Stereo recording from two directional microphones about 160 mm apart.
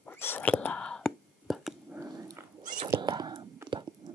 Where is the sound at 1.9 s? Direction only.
15° right (ahead or behind).